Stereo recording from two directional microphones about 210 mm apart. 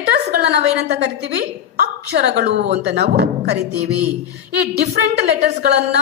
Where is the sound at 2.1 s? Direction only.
55° right (ahead or behind).